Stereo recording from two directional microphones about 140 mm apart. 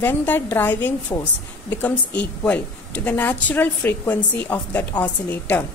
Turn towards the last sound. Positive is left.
turn(degrees=10)  # may be behind; listen again after turning